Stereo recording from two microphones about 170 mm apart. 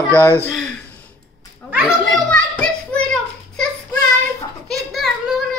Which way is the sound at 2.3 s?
5° left (ahead or behind).